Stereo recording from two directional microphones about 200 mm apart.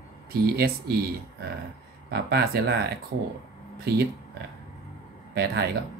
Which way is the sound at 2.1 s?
50° right (ahead or behind).